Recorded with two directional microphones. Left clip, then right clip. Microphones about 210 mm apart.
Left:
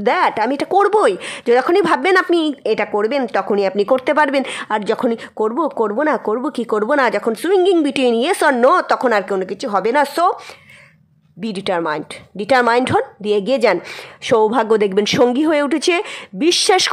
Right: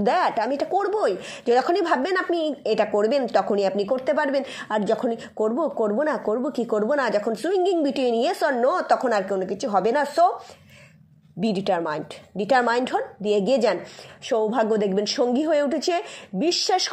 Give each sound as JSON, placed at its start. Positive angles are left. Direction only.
{"t": 0.0, "sound": "a woman's voice", "side_deg": 20}
{"t": 11.4, "sound": "a woman's voice", "side_deg": 20}
{"t": 14.2, "sound": "a woman's voice", "side_deg": 30}